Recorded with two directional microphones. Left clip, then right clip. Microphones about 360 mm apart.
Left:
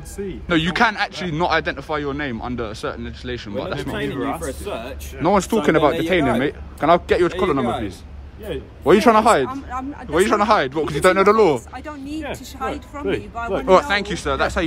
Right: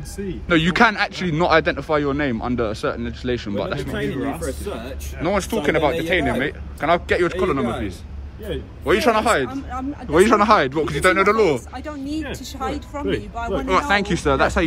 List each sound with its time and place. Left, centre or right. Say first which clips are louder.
0.5 s a man's voice: right 2 dB; centre
11.7 s a man's voice: right 2 dB; centre
13.5 s a man's voice: left 3 dB; centre